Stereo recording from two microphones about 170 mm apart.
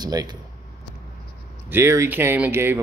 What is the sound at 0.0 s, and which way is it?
Speech, 25° right (ahead or behind).